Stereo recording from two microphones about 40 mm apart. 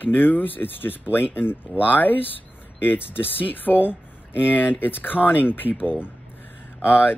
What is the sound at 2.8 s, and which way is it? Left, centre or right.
Speech, left.